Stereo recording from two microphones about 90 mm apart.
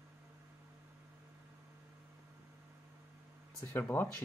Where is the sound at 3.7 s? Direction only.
20° left (ahead or behind).